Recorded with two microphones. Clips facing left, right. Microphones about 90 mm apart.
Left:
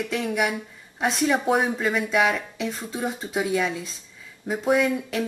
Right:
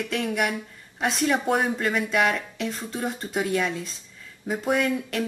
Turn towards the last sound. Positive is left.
turn(degrees=0)  # may be behind; listen again after turning